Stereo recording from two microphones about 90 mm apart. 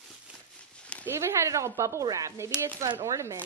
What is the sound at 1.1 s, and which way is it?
A woman's voice, 30° right (ahead or behind).